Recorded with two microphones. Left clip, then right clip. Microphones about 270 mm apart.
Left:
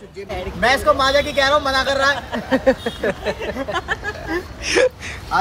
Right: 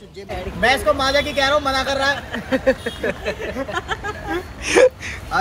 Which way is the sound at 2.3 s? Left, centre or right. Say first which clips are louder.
Left 2 dB; left.